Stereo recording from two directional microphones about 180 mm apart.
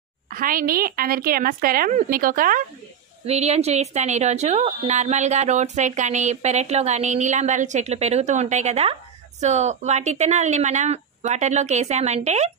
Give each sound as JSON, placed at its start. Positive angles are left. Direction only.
{"t": 0.3, "sound": "a woman's voice", "side_deg": -50}
{"t": 3.3, "sound": "speech", "side_deg": -35}